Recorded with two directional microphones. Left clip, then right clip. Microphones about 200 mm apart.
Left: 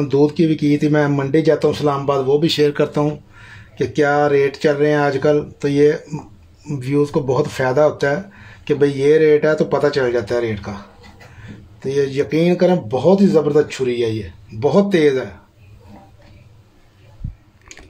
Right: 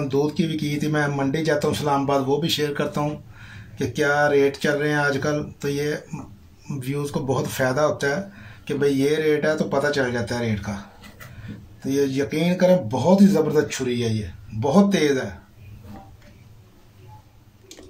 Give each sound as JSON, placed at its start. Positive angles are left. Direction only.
{"t": 0.1, "sound": "speech", "side_deg": 35}
{"t": 11.8, "sound": "speech", "side_deg": 40}